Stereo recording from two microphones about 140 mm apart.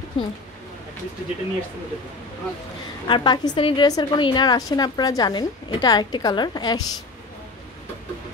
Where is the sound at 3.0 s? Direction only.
35° left (ahead or behind).